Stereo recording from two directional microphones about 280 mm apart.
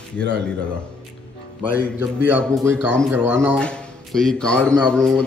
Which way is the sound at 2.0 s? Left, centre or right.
Centre.